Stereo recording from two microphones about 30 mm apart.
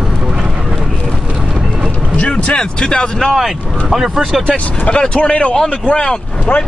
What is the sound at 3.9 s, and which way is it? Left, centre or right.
Speech, centre.